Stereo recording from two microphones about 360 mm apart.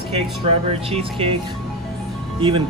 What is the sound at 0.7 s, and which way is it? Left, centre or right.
Speech, centre.